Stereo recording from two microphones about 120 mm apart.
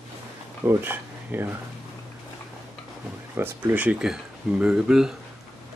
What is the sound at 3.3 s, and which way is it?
Speech, 20° right (ahead or behind).